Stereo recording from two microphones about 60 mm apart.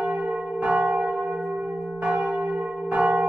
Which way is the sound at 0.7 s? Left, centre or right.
Centre.